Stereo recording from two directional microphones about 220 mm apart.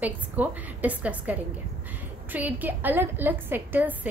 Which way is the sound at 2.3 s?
10° right (ahead or behind).